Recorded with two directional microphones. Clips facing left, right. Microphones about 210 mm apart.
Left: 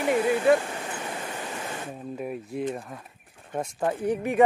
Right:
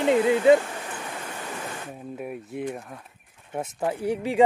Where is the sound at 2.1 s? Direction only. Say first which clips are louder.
Left 1 dB; 5° right (ahead or behind).